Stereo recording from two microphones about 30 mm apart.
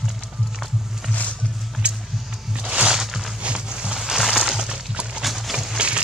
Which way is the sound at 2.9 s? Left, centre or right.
Centre.